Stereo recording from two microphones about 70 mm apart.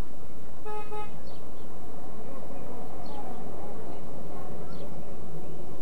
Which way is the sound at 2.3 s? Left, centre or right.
Centre.